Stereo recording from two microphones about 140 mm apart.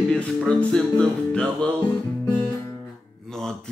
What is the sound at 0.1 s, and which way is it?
Music, 5° left (ahead or behind).